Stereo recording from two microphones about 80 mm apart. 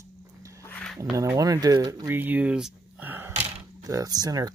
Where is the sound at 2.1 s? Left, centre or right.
Right.